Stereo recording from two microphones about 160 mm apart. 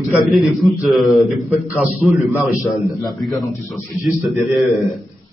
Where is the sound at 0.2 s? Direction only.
Centre (ahead or behind).